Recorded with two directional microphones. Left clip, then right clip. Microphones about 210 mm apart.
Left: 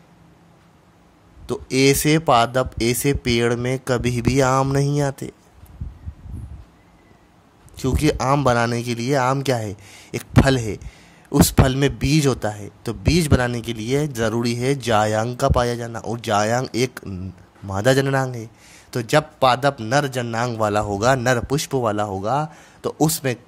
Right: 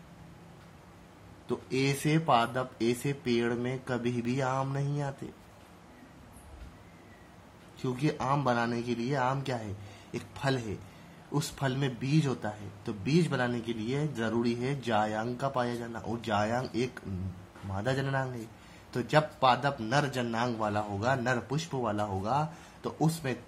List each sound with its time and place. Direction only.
1.5 s a man's voice: 50° left (ahead or behind)
7.7 s a man's voice: 50° left (ahead or behind)